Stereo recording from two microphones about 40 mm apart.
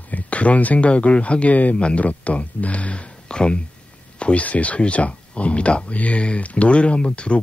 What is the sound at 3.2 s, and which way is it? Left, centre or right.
Speech, left.